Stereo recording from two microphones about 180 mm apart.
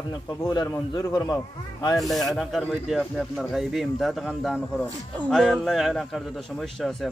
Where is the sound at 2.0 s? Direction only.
Centre (ahead or behind).